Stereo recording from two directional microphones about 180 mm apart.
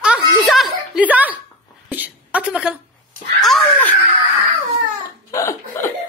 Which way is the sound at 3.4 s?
5° left (ahead or behind).